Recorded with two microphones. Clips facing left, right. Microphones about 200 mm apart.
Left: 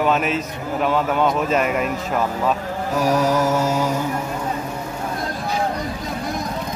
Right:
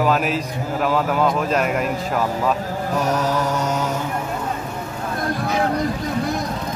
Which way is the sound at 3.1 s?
10° left (ahead or behind).